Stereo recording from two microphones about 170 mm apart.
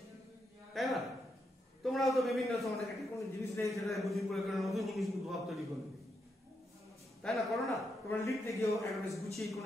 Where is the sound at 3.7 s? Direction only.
Centre (ahead or behind).